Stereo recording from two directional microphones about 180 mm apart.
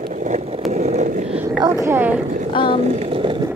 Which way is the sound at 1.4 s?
20° right (ahead or behind).